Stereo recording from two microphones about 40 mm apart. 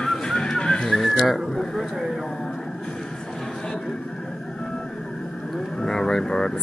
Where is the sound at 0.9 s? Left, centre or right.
Centre.